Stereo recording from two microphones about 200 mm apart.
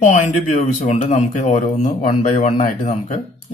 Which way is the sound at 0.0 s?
40° left (ahead or behind).